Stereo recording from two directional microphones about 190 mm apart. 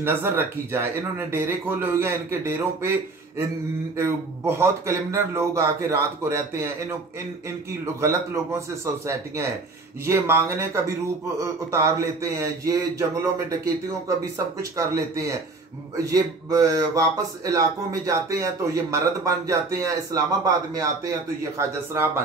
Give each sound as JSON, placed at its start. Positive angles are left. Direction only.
{"t": 0.0, "sound": "speech", "side_deg": -10}
{"t": 3.9, "sound": "speech", "side_deg": -15}
{"t": 7.8, "sound": "speech", "side_deg": -15}